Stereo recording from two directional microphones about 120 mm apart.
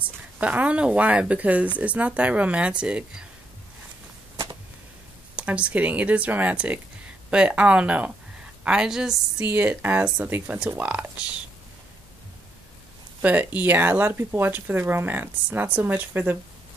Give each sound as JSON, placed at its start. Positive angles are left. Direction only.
{"t": 0.4, "sound": "speech", "side_deg": -10}
{"t": 5.3, "sound": "a woman's voice", "side_deg": -10}
{"t": 9.5, "sound": "speech", "side_deg": -15}
{"t": 13.2, "sound": "speech", "side_deg": -15}